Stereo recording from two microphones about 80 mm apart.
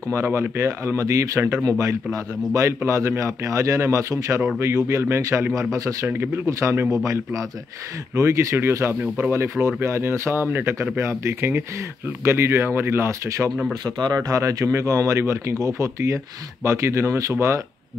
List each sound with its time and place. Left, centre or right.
0.1 s a man's voice: right
6.0 s speech: right
8.2 s a man's voice: right
13.8 s speech: right
14.3 s a man's voice: right